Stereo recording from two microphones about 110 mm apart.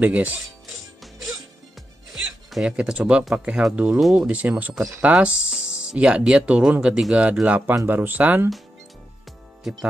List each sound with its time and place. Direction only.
0.0 s speech: 15° right (ahead or behind)
2.1 s speech: 5° right (ahead or behind)
9.6 s music: centre (ahead or behind)